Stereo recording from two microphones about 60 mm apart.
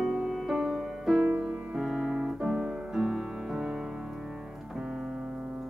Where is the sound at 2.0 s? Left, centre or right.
Right.